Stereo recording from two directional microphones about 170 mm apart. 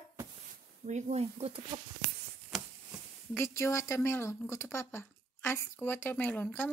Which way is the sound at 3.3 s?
15° left (ahead or behind).